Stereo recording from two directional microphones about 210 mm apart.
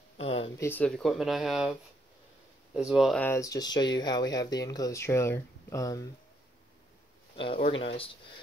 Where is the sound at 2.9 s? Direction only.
Centre (ahead or behind).